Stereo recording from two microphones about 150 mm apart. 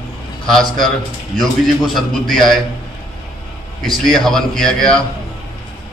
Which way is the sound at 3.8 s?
Centre (ahead or behind).